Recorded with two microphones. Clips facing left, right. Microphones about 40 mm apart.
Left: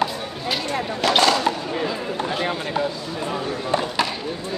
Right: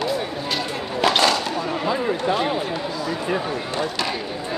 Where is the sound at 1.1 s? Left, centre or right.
Centre.